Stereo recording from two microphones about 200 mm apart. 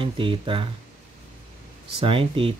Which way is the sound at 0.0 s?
25° right (ahead or behind).